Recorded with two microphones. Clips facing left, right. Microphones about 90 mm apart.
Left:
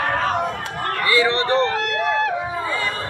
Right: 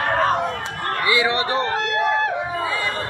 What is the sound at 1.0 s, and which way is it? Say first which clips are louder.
Speech: left 2 dB; 15° right (ahead or behind).